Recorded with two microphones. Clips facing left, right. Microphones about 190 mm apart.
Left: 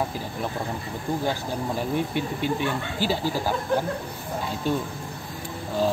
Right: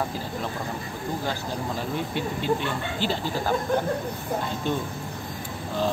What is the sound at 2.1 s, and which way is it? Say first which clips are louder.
Speech: even; 15° left (ahead or behind).